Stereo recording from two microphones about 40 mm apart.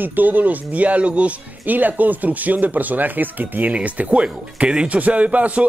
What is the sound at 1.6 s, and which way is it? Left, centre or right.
Speech, right.